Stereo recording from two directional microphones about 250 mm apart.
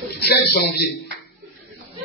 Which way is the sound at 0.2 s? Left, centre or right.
Left.